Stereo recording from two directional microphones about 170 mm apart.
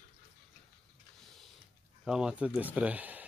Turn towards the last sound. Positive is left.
turn(degrees=-10)  # may be behind; listen again after turning